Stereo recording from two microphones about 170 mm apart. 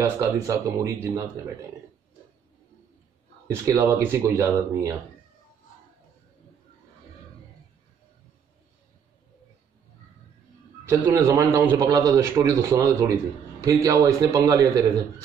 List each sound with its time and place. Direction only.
0.0 s a man's voice: 15° right (ahead or behind)
3.4 s a man's voice: 15° right (ahead or behind)
10.9 s a man's voice: 15° right (ahead or behind)